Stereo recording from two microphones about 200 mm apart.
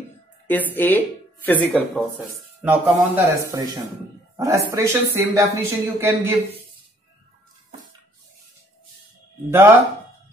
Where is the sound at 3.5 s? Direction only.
20° right (ahead or behind).